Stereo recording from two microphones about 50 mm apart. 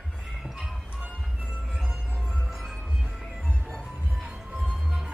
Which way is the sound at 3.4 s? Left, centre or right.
Centre.